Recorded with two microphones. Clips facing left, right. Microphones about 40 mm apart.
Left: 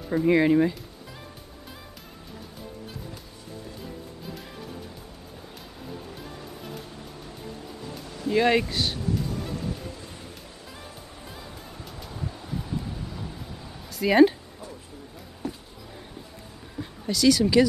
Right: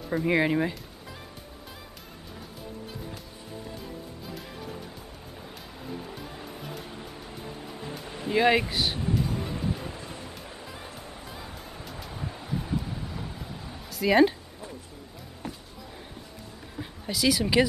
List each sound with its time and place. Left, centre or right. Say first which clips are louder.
0.1 s speech: left 4 dB; centre
6.1 s music: even; centre
7.9 s music: left 3 dB; right
8.4 s speech: even; centre
9.1 s music: right 1 dB; right
10.7 s music: right 2 dB; centre
12.2 s a sound: even; centre
15.4 s a sound: left 4 dB; right
16.7 s a sound: left 3 dB; centre